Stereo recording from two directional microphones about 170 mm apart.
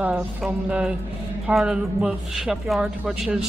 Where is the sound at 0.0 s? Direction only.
5° right (ahead or behind).